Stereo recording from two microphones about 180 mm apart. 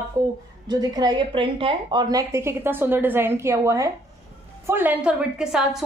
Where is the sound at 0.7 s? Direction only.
20° right (ahead or behind); by 5.8 s 5° right (ahead or behind).